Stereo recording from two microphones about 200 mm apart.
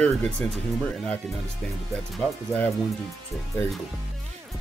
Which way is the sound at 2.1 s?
10° left (ahead or behind).